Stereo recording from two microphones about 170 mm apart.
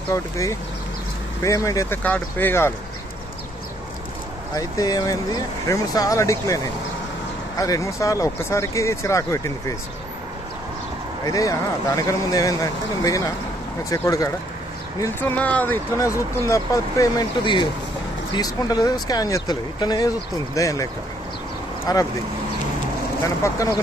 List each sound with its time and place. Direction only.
0.1 s speech: 20° left (ahead or behind)
4.6 s speech: 20° left (ahead or behind)
11.2 s speech: 20° left (ahead or behind)
23.2 s speech: 20° left (ahead or behind)